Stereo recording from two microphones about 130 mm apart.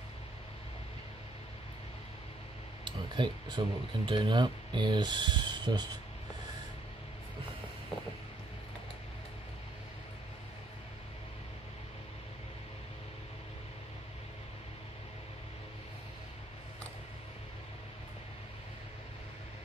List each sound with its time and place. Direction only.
2.8 s speech: 35° right (ahead or behind)